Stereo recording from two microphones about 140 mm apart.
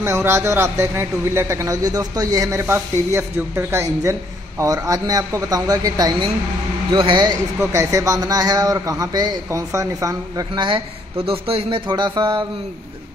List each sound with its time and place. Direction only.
0.0 s a man's voice: 20° right (ahead or behind)
11.2 s a man's voice: 40° right (ahead or behind)